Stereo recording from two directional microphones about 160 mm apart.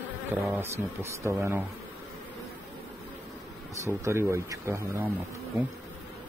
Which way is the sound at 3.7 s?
20° right (ahead or behind).